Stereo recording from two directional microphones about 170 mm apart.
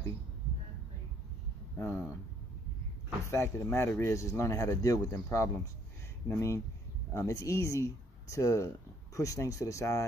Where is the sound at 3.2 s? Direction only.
15° left (ahead or behind).